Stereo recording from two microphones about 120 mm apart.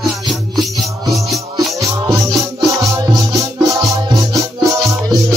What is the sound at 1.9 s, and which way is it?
Music, 30° right (ahead or behind).